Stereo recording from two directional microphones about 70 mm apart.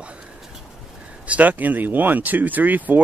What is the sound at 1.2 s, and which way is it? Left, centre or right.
Speech, right.